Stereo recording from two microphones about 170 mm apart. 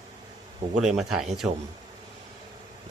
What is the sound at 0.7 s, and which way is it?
Speech, centre (ahead or behind).